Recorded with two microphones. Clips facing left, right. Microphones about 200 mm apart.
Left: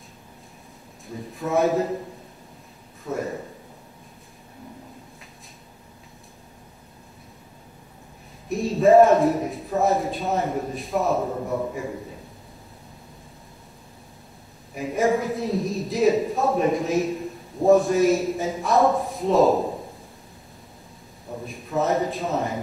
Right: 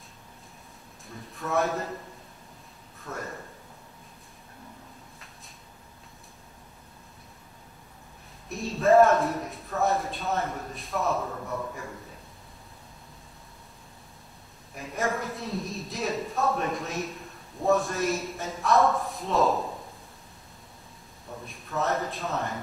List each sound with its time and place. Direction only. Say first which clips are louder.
1.0 s a sound: left 6 dB; centre (ahead or behind)
3.0 s a man's voice: left 9 dB; centre (ahead or behind)
8.5 s a woman's voice: left 5 dB; centre (ahead or behind)
11.1 s a man's voice: left 7 dB; 20° left (ahead or behind)
14.7 s a woman's voice: left 9 dB; centre (ahead or behind)
21.5 s a woman's voice: left 6 dB; centre (ahead or behind)